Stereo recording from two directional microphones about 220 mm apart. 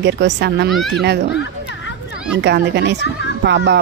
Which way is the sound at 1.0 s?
50° right (ahead or behind).